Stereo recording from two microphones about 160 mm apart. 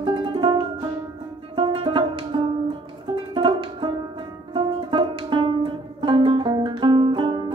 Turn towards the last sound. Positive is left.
turn(degrees=-30)  # may be behind; listen again after turning